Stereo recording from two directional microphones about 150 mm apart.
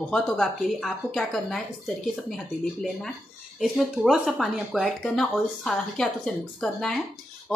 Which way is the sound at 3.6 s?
Centre (ahead or behind).